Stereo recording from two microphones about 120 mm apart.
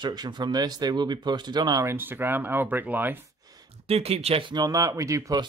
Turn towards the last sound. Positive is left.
turn(degrees=-30)  # may be behind; listen again after turning